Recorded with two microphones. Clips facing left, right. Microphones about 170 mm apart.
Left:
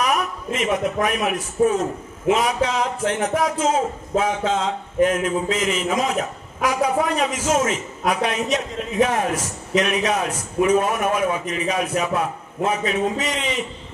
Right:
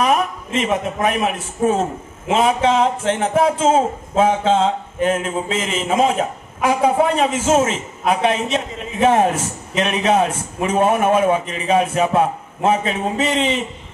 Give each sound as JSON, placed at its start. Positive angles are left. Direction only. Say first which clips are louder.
{"t": 0.0, "sound": "a man's voice", "louder": "right 5 dB", "side_deg": -25}